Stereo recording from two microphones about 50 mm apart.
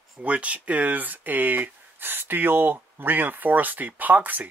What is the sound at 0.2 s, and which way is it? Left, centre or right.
Speech, right.